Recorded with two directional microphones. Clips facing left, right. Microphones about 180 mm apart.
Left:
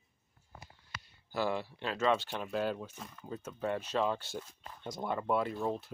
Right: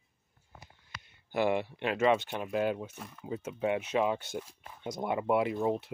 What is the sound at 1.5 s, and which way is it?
Speech, 60° right (ahead or behind).